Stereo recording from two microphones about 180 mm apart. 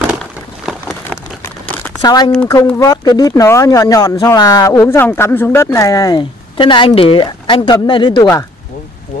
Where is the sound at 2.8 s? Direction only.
20° left (ahead or behind).